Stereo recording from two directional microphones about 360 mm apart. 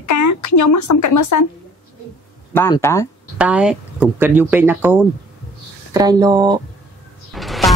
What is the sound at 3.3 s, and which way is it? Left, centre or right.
Speech, centre.